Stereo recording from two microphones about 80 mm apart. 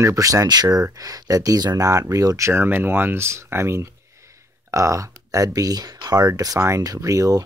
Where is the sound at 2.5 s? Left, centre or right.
Right.